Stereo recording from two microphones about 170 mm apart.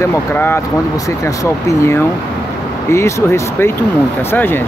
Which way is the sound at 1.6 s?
15° left (ahead or behind).